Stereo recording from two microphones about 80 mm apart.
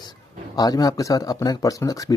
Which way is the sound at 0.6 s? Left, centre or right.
Left.